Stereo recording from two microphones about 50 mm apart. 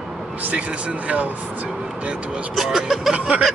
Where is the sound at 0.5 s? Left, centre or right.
Right.